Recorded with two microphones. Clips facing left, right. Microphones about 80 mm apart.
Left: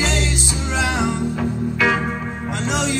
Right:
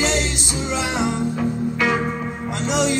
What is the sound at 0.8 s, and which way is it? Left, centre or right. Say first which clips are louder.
Music: left 3 dB; left.